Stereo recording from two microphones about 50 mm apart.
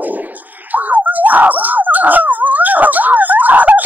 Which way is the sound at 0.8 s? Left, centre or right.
Right.